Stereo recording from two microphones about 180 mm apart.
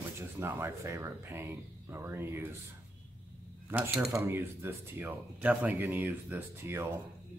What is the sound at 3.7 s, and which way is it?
Speech, 10° right (ahead or behind).